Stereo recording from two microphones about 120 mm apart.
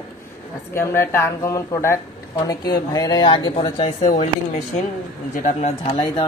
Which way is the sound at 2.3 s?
35° left (ahead or behind).